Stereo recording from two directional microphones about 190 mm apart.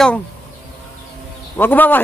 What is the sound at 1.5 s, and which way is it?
Speech, 10° left (ahead or behind).